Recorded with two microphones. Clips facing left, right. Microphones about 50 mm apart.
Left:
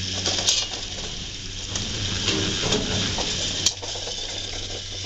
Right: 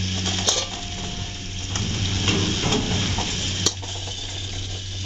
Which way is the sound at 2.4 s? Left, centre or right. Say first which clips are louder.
Right 2 dB; right.